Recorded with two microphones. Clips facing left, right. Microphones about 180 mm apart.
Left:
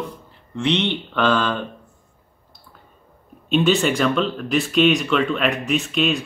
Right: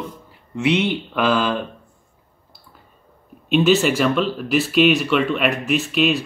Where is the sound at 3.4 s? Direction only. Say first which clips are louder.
Right 2 dB; 5° right (ahead or behind).